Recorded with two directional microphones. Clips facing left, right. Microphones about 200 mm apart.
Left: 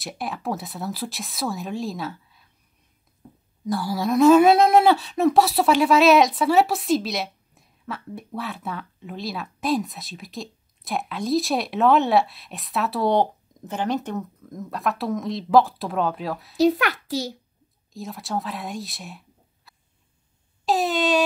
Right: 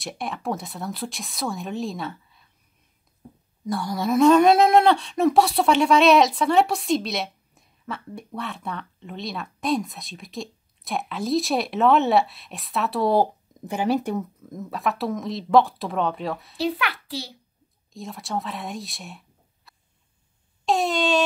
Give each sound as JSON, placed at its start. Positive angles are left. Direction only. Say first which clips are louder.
{"t": 0.0, "sound": "speech", "louder": "even", "side_deg": 0}
{"t": 3.6, "sound": "speech", "louder": "left 1 dB", "side_deg": 0}
{"t": 16.5, "sound": "a child's voice", "louder": "left 9 dB", "side_deg": 45}
{"t": 17.9, "sound": "speech", "louder": "left 1 dB", "side_deg": 0}
{"t": 20.6, "sound": "air horn", "louder": "even", "side_deg": 0}